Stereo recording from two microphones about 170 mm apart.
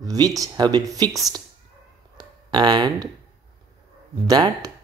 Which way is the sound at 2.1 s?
25° right (ahead or behind).